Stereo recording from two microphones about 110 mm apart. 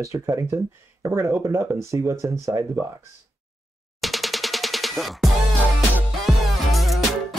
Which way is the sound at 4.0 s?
Centre (ahead or behind).